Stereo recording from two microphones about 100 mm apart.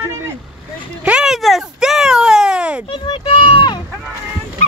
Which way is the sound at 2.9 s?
55° left (ahead or behind).